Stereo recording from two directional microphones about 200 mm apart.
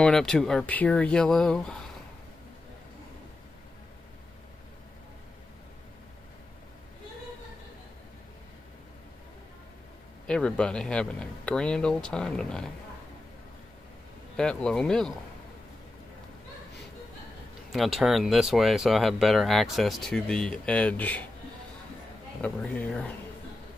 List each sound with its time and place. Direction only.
0.0 s speech: 5° left (ahead or behind)
10.2 s speech: 5° left (ahead or behind)
14.3 s speech: 5° left (ahead or behind)
17.7 s speech: centre (ahead or behind)
22.4 s speech: 5° left (ahead or behind)